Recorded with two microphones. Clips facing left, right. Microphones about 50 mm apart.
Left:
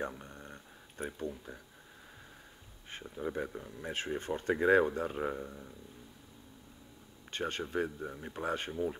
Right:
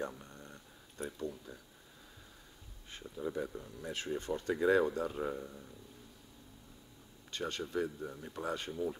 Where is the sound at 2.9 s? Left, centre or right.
Left.